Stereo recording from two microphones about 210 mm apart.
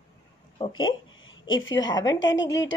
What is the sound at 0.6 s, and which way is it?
Speech, 20° left (ahead or behind).